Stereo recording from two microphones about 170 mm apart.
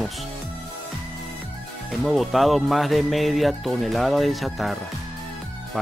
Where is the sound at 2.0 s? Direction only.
Centre (ahead or behind).